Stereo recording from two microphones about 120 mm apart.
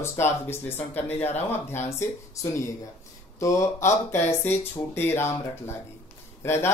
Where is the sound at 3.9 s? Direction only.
20° left (ahead or behind).